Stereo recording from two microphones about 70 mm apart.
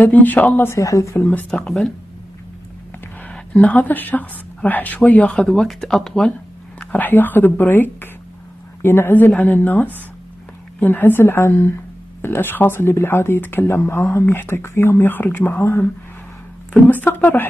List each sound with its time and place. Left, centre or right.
0.0 s speech: left
0.7 s speech: left
1.5 s speech: centre
3.3 s a woman's voice: left
6.8 s speech: left
16.7 s speech: left